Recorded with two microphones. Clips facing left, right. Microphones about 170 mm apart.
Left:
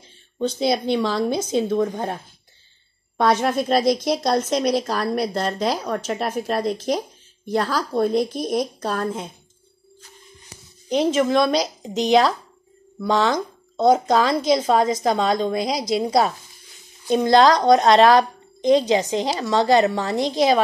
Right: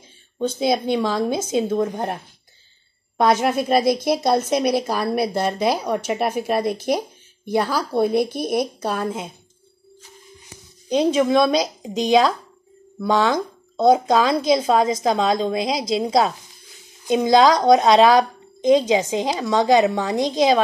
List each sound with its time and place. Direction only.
0.4 s a woman's voice: 10° right (ahead or behind)
11.1 s a woman's voice: 10° right (ahead or behind)
17.0 s speech: 15° right (ahead or behind)
17.4 s a woman's voice: 5° right (ahead or behind)